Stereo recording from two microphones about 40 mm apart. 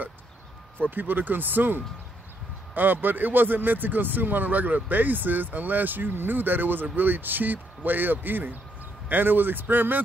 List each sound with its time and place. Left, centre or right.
0.7 s speech: right